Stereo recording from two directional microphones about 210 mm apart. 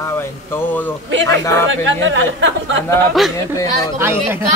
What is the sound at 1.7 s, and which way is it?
Speech, 60° right (ahead or behind).